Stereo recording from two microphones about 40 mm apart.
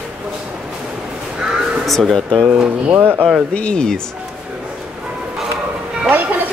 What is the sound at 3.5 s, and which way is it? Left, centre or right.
Speech, left.